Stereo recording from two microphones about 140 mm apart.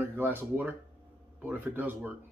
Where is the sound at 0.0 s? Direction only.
15° right (ahead or behind).